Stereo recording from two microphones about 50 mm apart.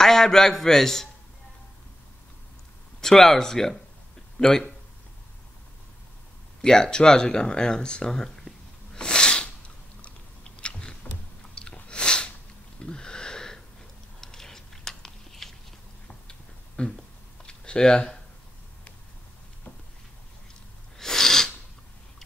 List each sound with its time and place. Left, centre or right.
0.0 s a man's voice: centre
3.0 s speech: centre
6.6 s speech: centre
8.9 s sneeze: centre
10.0 s biting: left
11.5 s chewing: centre
12.8 s a sound: centre
14.2 s biting: centre
16.3 s a sound: centre
21.0 s sneeze: centre